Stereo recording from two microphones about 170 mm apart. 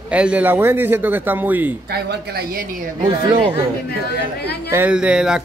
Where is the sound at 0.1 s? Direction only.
5° right (ahead or behind).